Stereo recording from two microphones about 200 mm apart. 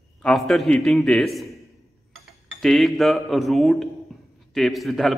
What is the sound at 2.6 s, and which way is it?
A man's voice, centre (ahead or behind).